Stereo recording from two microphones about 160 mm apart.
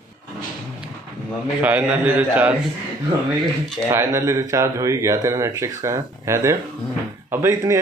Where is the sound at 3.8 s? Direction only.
15° right (ahead or behind).